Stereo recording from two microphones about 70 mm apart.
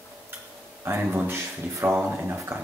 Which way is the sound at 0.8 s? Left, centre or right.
Right.